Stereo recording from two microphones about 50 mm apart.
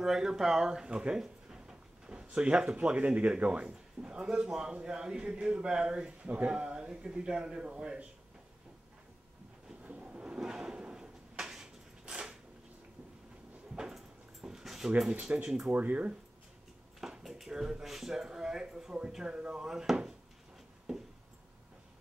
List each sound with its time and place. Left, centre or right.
0.0 s speech: centre
6.2 s speech: right
9.8 s a sound: right
10.4 s drawer open or close: centre
14.4 s dog: centre
15.3 s speech: right
17.0 s speech: centre